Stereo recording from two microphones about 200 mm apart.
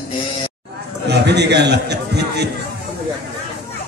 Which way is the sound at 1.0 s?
55° right (ahead or behind).